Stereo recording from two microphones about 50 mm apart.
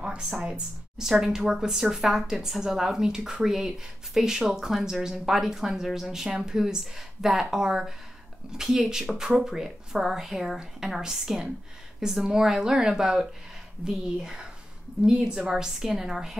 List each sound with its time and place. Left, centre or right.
0.4 s speech: centre
1.0 s speech: centre